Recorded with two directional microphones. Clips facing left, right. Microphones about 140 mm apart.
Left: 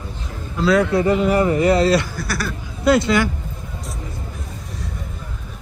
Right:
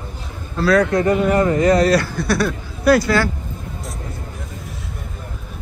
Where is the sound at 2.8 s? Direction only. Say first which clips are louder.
Right 1 dB; 25° left (ahead or behind).